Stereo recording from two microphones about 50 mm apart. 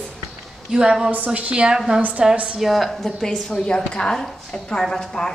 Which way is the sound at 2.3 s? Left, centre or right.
Right.